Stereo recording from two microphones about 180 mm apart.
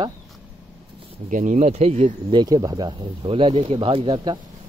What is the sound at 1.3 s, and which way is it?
Speech, 45° right (ahead or behind).